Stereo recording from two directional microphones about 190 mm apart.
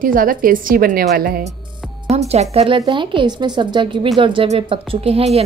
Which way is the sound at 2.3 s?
35° right (ahead or behind).